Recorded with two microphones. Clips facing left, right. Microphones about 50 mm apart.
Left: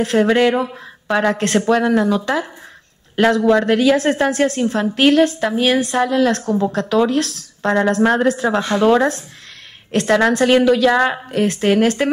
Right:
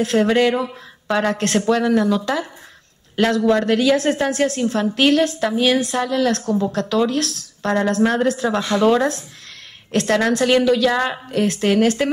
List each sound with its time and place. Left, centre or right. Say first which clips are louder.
0.0 s a woman's voice: left 2 dB; centre
8.5 s a woman's voice: left 1 dB; centre